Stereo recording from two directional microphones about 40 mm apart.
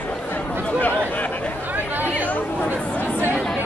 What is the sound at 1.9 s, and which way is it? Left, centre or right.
Chatter, right.